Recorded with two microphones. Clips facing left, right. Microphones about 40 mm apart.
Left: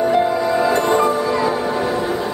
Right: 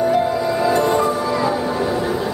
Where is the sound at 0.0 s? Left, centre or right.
Centre.